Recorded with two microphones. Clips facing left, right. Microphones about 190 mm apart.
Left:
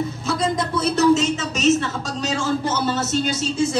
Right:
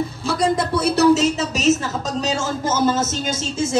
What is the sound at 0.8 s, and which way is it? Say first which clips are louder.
Speech: right 2 dB; 35° right (ahead or behind).